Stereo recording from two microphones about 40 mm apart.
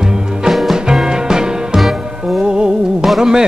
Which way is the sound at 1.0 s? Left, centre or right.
Centre.